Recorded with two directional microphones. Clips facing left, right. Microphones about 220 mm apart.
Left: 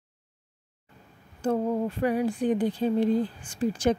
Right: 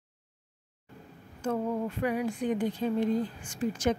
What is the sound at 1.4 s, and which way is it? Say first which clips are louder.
A woman's voice: left 4 dB; 30° left (ahead or behind).